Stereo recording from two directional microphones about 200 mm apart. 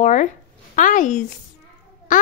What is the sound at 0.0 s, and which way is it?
A woman's voice, 35° left (ahead or behind).